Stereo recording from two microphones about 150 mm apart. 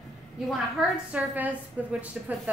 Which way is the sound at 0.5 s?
5° right (ahead or behind).